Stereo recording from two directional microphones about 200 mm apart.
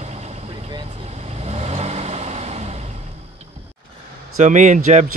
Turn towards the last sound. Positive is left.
turn(degrees=-40)  # may be behind; listen again after turning